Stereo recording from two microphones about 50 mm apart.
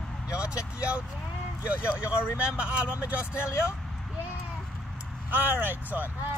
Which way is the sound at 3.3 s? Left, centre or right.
Left.